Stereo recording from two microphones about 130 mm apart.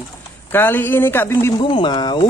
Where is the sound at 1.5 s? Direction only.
35° left (ahead or behind).